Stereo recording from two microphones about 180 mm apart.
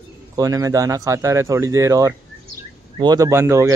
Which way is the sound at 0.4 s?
20° right (ahead or behind).